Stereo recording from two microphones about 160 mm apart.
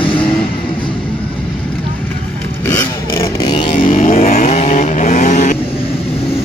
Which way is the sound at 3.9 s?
40° left (ahead or behind).